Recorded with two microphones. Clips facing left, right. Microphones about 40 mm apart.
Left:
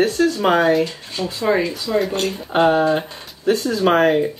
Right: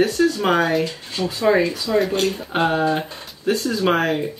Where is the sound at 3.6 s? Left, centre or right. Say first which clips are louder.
Left 4 dB; left.